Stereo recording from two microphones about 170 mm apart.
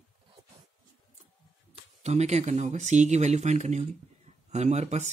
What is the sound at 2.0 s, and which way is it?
Speech, 40° right (ahead or behind).